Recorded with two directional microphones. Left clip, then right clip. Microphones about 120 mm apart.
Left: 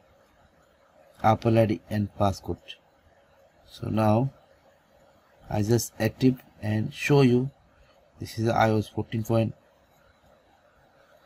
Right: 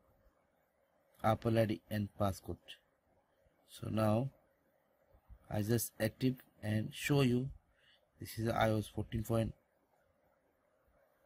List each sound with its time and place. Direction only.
1.2 s speech: 35° right (ahead or behind)
5.5 s speech: 40° right (ahead or behind)
8.2 s speech: 40° right (ahead or behind)